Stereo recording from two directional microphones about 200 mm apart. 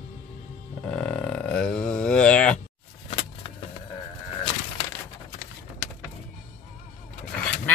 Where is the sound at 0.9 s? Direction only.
5° left (ahead or behind).